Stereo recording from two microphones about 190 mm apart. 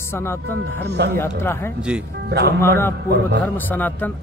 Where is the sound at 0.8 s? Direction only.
60° right (ahead or behind).